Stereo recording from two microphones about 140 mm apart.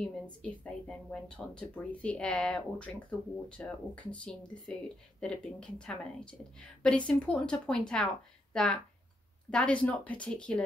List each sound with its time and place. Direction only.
0.0 s speech: 5° left (ahead or behind)